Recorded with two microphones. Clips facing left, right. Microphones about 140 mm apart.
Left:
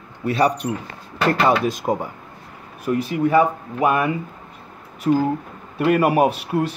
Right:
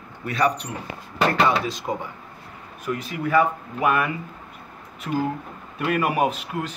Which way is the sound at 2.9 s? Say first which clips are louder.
Left 6 dB; 30° left (ahead or behind).